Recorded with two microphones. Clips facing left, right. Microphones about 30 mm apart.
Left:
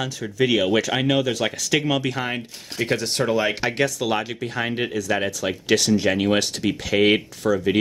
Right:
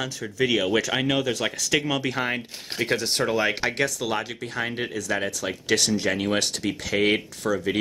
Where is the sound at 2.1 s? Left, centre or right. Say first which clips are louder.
Even; centre.